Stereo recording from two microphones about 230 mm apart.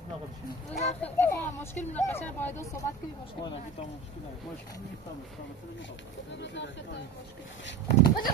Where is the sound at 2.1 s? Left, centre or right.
Centre.